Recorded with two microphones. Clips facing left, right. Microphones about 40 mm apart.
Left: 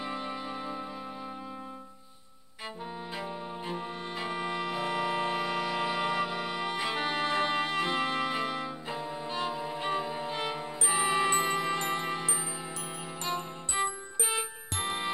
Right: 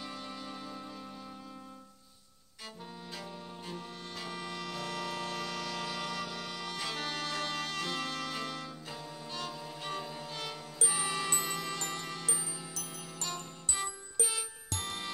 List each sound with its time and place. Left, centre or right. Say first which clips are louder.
0.0 s music: left 7 dB; left
3.2 s music: left 8 dB; left